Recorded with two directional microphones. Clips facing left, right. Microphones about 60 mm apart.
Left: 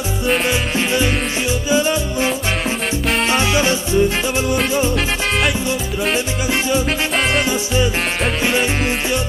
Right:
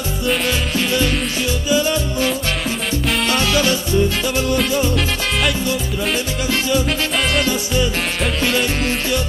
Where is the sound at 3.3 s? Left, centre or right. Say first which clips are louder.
Even; left.